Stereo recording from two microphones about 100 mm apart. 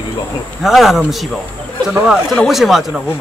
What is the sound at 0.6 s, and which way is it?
Speech, centre (ahead or behind).